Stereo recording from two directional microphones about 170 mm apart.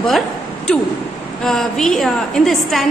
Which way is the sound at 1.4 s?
Centre (ahead or behind).